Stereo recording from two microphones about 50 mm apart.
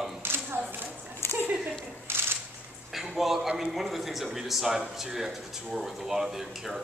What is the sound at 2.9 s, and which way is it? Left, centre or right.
A man's voice, centre.